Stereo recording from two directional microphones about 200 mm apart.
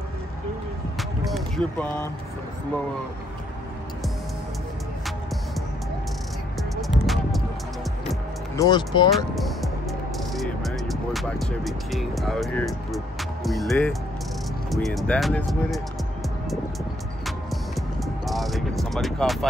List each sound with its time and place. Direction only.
0.9 s music: centre (ahead or behind)
7.1 s music: centre (ahead or behind)
8.5 s speech: 20° left (ahead or behind)
9.1 s music: centre (ahead or behind)
14.7 s speech: centre (ahead or behind)
17.7 s music: centre (ahead or behind)